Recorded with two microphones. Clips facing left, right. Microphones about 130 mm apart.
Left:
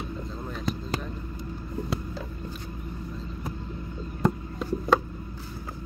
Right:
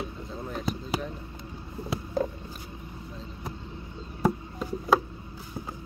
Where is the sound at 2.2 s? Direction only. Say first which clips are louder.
Right 10 dB; 50° right (ahead or behind).